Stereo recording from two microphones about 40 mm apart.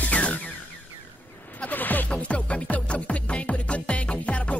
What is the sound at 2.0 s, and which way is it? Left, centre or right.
Music, left.